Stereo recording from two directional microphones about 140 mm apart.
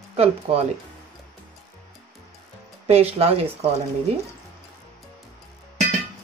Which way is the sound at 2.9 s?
45° right (ahead or behind).